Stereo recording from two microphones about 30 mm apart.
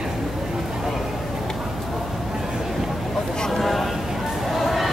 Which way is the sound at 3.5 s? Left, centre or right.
Centre.